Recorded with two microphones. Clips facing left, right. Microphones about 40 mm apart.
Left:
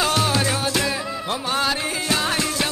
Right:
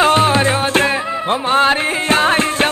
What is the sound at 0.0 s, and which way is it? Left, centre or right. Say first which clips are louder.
Music: right 8 dB; right.